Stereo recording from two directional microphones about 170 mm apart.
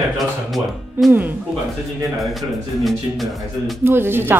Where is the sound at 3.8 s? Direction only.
15° right (ahead or behind).